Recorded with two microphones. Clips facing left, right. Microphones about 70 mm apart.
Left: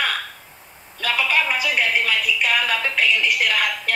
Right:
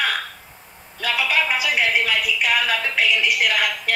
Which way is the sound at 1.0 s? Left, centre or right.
Left.